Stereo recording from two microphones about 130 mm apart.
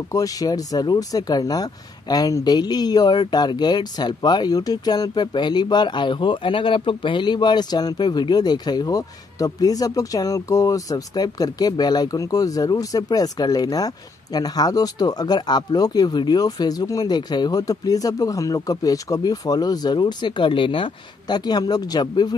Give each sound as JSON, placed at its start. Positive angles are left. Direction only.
{"t": 0.1, "sound": "speech", "side_deg": 25}